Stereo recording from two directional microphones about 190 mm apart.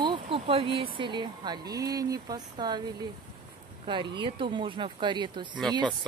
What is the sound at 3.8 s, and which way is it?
Speech, 25° right (ahead or behind).